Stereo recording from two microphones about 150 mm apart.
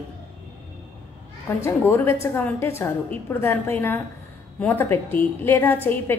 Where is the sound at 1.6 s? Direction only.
15° left (ahead or behind).